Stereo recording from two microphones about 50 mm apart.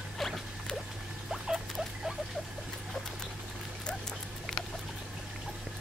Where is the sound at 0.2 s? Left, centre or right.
Centre.